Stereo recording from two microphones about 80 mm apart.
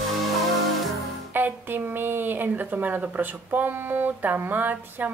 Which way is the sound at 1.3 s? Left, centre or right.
Right.